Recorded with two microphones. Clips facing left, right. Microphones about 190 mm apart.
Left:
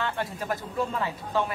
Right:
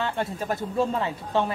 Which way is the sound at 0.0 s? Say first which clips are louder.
Right 3 dB; 25° right (ahead or behind).